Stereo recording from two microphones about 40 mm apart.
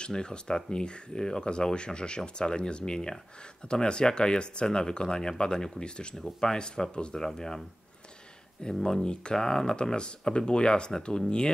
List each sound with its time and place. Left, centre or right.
0.0 s speech: left
8.8 s speech: centre